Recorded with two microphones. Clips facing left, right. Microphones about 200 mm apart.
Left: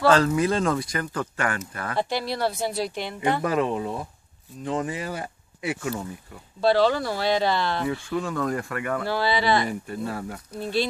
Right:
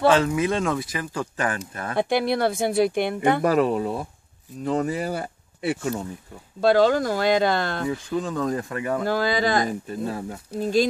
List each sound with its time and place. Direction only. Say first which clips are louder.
0.1 s speech: even; 5° right (ahead or behind)
2.0 s speech: right 5 dB; 55° right (ahead or behind)
3.4 s speech: right 4 dB; 40° right (ahead or behind)
6.6 s speech: right 2 dB; 45° right (ahead or behind)
7.9 s speech: right 1 dB; 20° right (ahead or behind)
9.0 s speech: right 2 dB; 45° right (ahead or behind)
9.8 s speech: right 2 dB; 25° right (ahead or behind)
10.6 s speech: right 5 dB; 45° right (ahead or behind)